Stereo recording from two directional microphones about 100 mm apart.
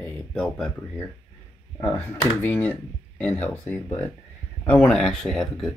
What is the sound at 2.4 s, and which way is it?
Speech, 15° left (ahead or behind).